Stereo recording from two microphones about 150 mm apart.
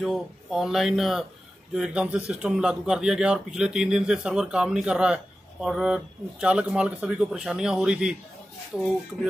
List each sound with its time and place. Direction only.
0.0 s a man's voice: centre (ahead or behind)